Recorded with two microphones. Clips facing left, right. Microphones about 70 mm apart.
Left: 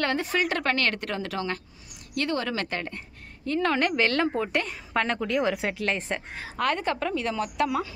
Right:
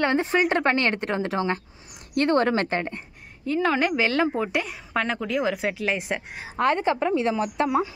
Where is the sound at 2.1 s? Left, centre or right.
Right.